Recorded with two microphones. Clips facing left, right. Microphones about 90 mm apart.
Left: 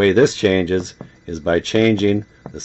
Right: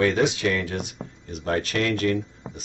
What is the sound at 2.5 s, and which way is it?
Speech, 10° left (ahead or behind).